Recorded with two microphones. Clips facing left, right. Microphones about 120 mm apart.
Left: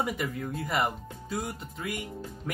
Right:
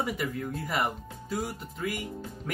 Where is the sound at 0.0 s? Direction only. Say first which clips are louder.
Even; 5° left (ahead or behind).